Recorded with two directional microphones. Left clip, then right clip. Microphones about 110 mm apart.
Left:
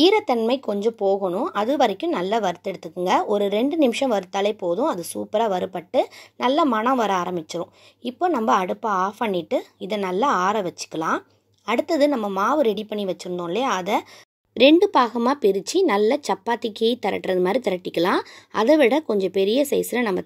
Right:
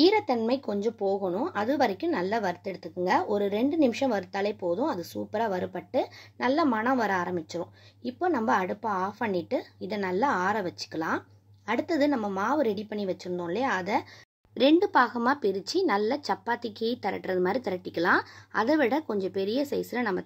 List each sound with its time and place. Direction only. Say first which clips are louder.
0.0 s speech: left 5 dB; 50° left (ahead or behind)
14.6 s speech: left 7 dB; 70° left (ahead or behind)